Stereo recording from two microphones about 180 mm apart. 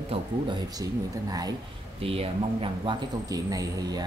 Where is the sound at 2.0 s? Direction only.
30° right (ahead or behind).